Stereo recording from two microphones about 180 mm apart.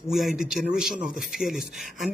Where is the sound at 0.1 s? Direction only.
Centre (ahead or behind).